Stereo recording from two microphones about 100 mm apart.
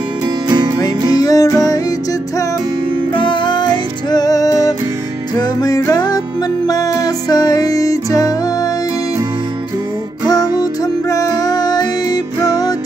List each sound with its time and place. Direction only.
0.5 s music: 40° right (ahead or behind)
1.1 s music: 35° left (ahead or behind)
3.2 s music: 50° left (ahead or behind); by 8.4 s 35° left (ahead or behind)
10.2 s music: 40° left (ahead or behind)